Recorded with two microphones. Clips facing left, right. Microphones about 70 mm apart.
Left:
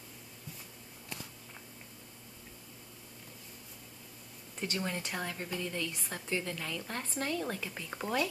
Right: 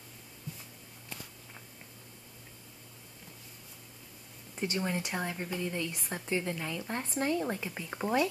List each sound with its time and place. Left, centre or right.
4.6 s speech: centre